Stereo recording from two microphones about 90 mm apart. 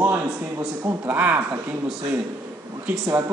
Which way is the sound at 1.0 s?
20° right (ahead or behind).